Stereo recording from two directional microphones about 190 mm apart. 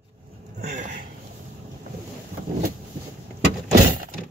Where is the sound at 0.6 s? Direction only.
40° right (ahead or behind).